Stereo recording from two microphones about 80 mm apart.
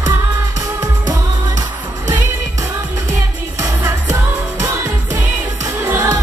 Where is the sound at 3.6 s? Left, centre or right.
Right.